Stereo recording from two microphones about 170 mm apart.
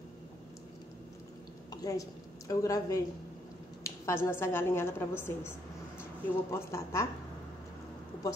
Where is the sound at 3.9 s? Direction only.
20° left (ahead or behind).